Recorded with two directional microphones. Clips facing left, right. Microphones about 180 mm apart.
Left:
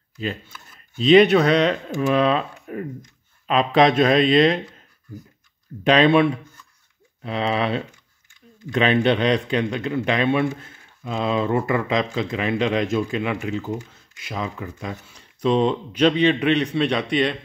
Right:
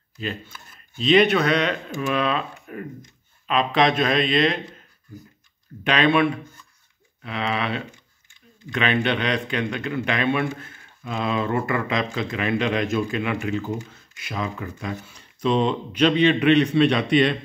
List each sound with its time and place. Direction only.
1.0 s a man's voice: 35° left (ahead or behind)
5.9 s a man's voice: 35° left (ahead or behind)